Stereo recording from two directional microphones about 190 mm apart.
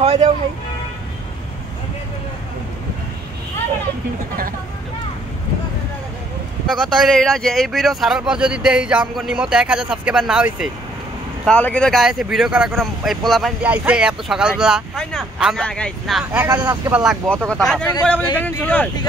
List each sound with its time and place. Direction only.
0.0 s music: 30° right (ahead or behind)
6.7 s speech: centre (ahead or behind)
16.3 s speech: 10° right (ahead or behind); by 18.9 s 10° left (ahead or behind)